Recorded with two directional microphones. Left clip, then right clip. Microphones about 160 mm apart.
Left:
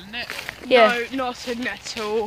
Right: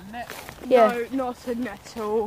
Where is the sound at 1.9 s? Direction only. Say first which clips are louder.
Even; 35° right (ahead or behind).